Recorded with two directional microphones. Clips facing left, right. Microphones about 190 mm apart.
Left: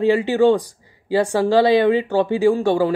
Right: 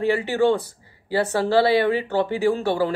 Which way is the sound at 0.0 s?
15° left (ahead or behind).